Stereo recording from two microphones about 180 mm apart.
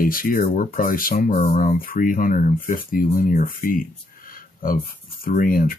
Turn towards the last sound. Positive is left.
turn(degrees=50)  # may be behind; listen again after turning